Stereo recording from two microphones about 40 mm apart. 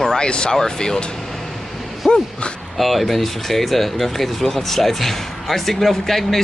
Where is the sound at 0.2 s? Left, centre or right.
Left.